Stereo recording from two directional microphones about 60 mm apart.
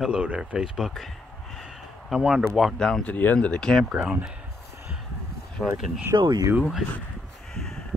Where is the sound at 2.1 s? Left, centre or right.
Centre.